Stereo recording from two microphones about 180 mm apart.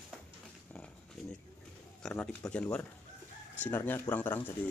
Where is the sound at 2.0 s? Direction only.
5° left (ahead or behind).